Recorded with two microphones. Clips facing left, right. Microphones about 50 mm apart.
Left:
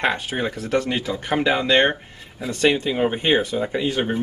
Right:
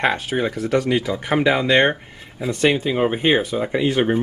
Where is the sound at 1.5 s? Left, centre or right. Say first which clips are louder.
Right 1 dB; centre.